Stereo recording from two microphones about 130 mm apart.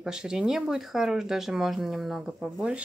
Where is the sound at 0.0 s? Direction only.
5° right (ahead or behind).